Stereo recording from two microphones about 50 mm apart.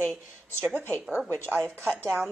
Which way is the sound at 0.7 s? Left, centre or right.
Left.